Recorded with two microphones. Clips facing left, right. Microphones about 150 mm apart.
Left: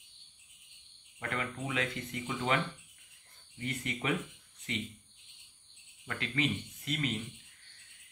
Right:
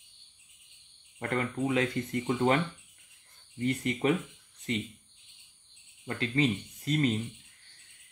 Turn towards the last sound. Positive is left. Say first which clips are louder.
# right 7 dB
turn(degrees=-35)  # may be behind; listen again after turning